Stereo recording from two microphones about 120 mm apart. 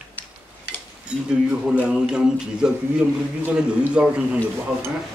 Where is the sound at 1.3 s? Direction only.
10° right (ahead or behind).